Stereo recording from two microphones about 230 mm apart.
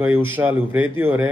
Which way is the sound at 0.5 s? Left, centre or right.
Centre.